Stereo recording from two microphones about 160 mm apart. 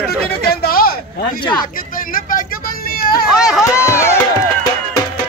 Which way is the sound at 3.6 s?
15° left (ahead or behind).